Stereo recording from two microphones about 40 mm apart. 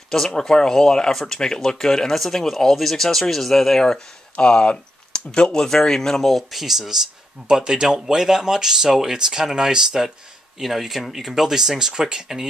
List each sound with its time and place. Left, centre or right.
0.1 s speech: centre
3.8 s speech: centre
7.4 s speech: centre